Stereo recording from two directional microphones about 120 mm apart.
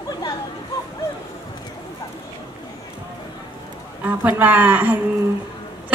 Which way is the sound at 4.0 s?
15° right (ahead or behind).